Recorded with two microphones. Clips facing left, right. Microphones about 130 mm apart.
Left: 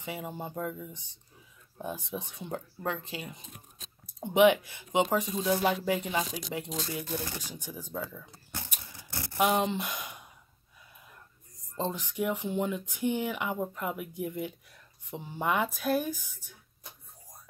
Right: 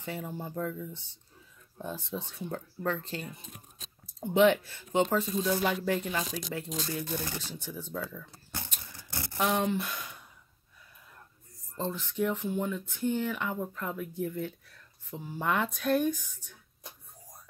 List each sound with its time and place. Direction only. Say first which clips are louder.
0.0 s speech: even; 15° left (ahead or behind)
7.9 s a sound: left 1 dB; 10° left (ahead or behind)
9.1 s a sound: right 1 dB; centre (ahead or behind)
9.4 s speech: left 2 dB; 10° left (ahead or behind)
11.7 s speech: left 1 dB; 15° left (ahead or behind)
15.4 s speech: left 1 dB; 5° left (ahead or behind)